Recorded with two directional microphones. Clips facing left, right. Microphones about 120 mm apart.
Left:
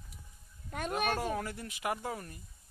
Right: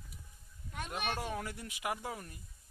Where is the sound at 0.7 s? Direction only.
50° left (ahead or behind).